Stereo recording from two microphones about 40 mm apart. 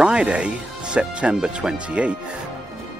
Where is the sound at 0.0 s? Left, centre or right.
Right.